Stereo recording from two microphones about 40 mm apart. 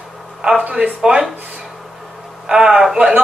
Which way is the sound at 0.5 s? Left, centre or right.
Right.